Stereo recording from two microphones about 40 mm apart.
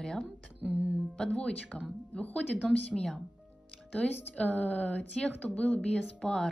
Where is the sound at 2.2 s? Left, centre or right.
Left.